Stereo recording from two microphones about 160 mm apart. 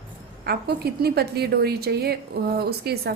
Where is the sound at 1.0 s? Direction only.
85° right.